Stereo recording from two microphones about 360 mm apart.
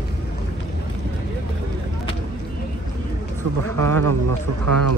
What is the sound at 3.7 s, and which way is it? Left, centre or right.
A man's voice, right.